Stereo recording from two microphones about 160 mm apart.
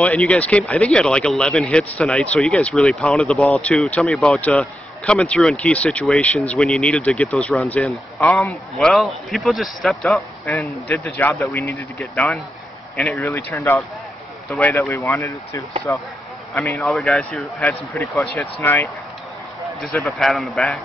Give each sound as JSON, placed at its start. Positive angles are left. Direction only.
{"t": 0.0, "sound": "speech", "side_deg": 10}
{"t": 16.9, "sound": "speech", "side_deg": 5}